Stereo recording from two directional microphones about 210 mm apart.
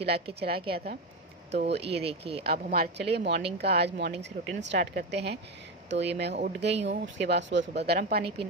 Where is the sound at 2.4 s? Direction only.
45° right (ahead or behind).